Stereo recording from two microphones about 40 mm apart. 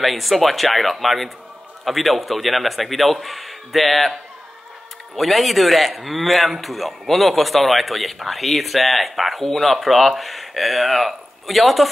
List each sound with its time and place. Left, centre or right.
0.0 s a man's voice: centre